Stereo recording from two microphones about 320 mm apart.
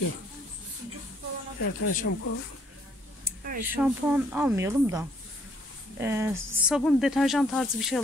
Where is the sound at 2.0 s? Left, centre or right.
Left.